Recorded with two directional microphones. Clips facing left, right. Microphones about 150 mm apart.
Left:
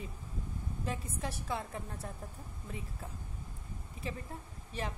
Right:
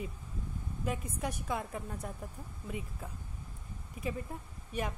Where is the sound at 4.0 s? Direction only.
30° left (ahead or behind).